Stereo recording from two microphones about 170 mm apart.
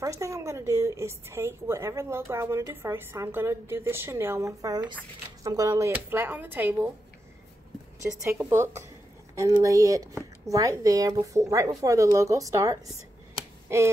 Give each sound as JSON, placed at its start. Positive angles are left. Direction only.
{"t": 0.0, "sound": "a woman's voice", "side_deg": -20}
{"t": 8.2, "sound": "a woman's voice", "side_deg": -15}